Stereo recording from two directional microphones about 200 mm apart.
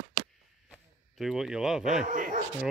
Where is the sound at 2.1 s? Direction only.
40° right (ahead or behind).